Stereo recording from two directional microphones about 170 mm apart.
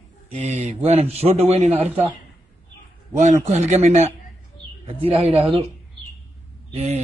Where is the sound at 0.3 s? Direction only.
40° right (ahead or behind).